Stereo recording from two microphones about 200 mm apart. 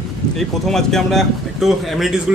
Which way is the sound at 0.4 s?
Centre (ahead or behind).